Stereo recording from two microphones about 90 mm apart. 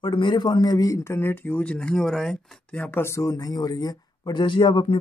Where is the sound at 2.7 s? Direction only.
25° left (ahead or behind).